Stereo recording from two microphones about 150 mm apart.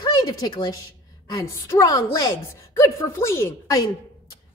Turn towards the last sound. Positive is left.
turn(degrees=20)  # may be behind; listen again after turning